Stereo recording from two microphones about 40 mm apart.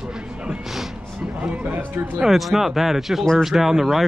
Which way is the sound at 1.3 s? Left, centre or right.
Right.